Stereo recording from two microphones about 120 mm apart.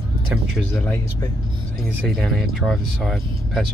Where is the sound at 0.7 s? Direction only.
15° left (ahead or behind).